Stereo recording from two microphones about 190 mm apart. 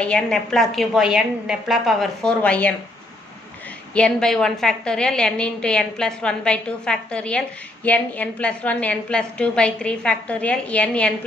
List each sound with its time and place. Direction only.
0.0 s a woman's voice: 5° left (ahead or behind)
3.9 s a woman's voice: 5° left (ahead or behind)